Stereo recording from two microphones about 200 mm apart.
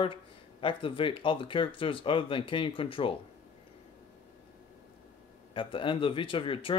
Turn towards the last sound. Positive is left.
turn(degrees=25)  # may be behind; listen again after turning